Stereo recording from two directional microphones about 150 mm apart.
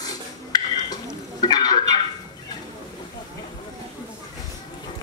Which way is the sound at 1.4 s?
30° left (ahead or behind).